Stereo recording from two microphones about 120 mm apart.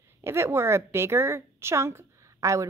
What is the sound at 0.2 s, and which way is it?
Speech, 20° right (ahead or behind).